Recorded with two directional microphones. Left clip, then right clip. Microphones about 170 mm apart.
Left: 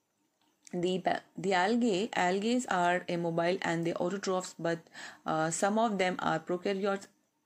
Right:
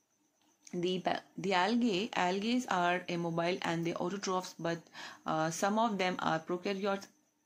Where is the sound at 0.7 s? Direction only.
20° left (ahead or behind).